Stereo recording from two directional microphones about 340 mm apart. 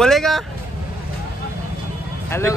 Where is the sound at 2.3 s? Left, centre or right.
Centre.